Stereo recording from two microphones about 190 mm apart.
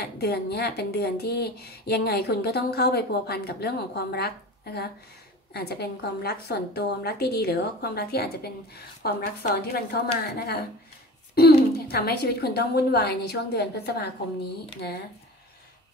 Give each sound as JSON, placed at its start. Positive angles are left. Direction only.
{"t": 0.0, "sound": "a woman's voice", "side_deg": 55}